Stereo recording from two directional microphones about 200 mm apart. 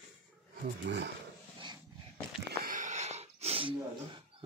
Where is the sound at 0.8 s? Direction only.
55° right (ahead or behind).